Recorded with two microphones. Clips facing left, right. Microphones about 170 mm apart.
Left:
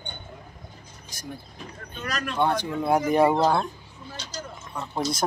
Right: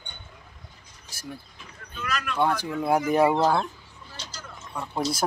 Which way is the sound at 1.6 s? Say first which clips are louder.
Left 2 dB; 35° left (ahead or behind).